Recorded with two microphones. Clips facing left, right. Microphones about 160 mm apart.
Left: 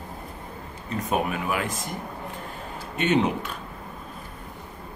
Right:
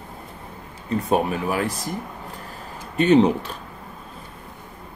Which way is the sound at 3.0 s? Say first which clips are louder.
Right 7 dB; 35° right (ahead or behind).